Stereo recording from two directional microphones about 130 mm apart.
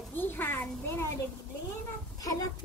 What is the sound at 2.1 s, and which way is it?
Speech, 25° left (ahead or behind).